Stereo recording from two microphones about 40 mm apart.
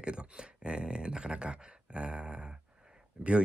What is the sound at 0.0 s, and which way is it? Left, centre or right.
Speech, right.